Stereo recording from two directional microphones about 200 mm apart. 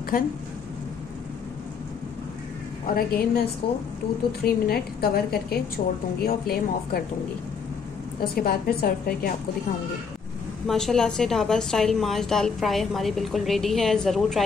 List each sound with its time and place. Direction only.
2.9 s a woman's voice: 50° left (ahead or behind)
5.8 s a woman's voice: 35° left (ahead or behind)
6.2 s a woman's voice: 50° left (ahead or behind)
8.2 s a woman's voice: 50° left (ahead or behind)
10.7 s a woman's voice: centre (ahead or behind)